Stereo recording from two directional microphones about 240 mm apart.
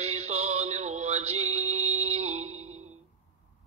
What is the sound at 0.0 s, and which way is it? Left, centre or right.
Music, right.